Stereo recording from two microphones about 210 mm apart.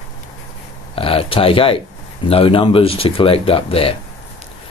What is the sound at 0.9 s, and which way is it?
Speech, 25° left (ahead or behind).